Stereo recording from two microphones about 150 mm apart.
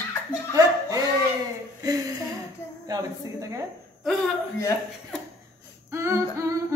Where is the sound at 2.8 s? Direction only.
25° right (ahead or behind).